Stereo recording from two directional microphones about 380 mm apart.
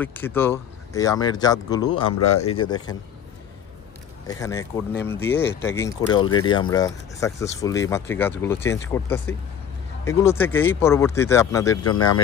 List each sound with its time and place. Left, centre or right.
0.0 s speech: centre
2.1 s speech: left
2.5 s speech: centre
4.3 s speech: centre